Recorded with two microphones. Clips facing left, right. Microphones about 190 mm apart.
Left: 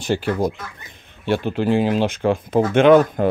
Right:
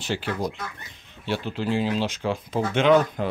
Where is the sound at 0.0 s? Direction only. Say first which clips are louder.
Left 7 dB; 50° left (ahead or behind).